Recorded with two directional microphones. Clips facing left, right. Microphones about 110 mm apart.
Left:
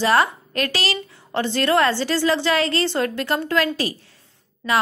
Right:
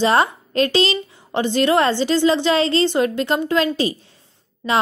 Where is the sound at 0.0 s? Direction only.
20° right (ahead or behind).